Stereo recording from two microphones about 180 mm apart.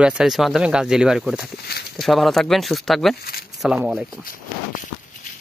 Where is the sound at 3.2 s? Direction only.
60° left (ahead or behind).